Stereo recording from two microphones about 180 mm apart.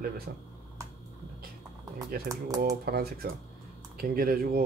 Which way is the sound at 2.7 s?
55° right (ahead or behind).